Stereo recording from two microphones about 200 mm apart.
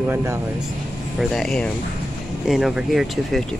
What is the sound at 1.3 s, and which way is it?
Speech, centre (ahead or behind).